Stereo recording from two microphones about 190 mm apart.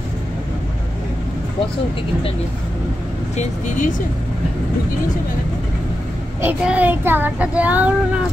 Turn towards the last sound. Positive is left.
turn(degrees=-10)  # may be behind; listen again after turning